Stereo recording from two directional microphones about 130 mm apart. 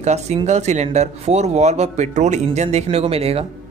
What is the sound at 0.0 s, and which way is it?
Speech, 60° right (ahead or behind).